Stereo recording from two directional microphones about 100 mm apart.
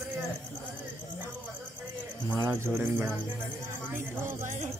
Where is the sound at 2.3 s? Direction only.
30° right (ahead or behind).